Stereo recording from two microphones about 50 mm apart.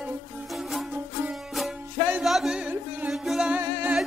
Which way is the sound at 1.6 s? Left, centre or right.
Centre.